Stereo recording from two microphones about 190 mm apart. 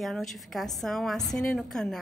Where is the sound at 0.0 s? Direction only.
Centre (ahead or behind).